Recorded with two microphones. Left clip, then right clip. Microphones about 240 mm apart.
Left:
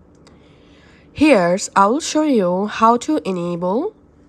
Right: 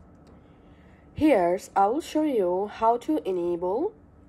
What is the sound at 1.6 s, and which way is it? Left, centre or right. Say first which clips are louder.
Speech: left 8 dB; left.